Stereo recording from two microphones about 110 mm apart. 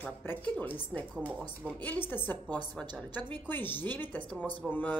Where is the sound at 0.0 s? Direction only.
15° left (ahead or behind).